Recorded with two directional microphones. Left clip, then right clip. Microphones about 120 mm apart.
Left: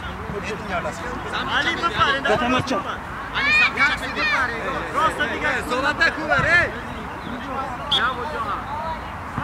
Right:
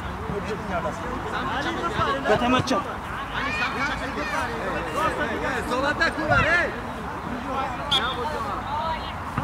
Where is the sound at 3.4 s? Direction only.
30° left (ahead or behind).